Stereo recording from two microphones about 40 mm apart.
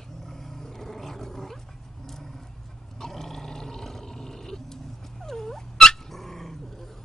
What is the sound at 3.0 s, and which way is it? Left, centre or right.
Roar, centre.